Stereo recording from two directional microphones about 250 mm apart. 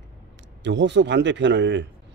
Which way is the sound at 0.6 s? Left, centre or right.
Right.